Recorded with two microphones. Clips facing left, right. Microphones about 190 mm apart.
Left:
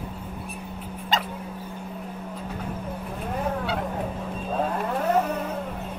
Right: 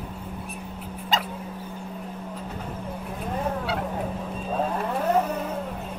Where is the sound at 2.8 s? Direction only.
10° right (ahead or behind).